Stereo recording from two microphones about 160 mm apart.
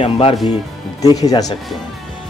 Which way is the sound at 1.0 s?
20° left (ahead or behind).